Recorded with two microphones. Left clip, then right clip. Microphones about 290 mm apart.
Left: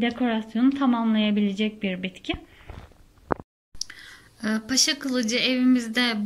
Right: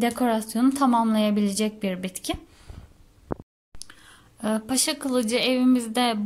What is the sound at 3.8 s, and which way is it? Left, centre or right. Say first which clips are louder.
Speech: left 6 dB; centre.